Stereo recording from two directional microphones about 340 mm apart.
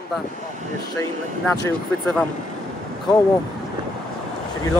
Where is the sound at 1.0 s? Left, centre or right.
Centre.